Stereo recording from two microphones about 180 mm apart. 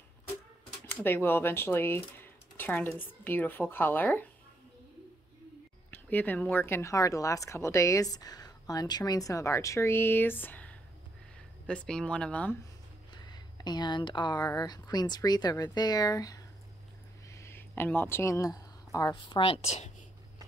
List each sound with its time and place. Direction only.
1.0 s speech: 10° left (ahead or behind)
5.9 s speech: 10° left (ahead or behind)
13.1 s speech: 25° left (ahead or behind)